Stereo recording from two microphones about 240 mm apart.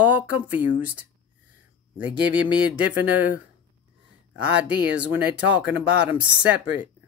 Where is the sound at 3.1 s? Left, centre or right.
Centre.